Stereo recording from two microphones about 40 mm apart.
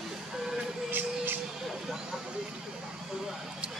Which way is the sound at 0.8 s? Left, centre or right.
Right.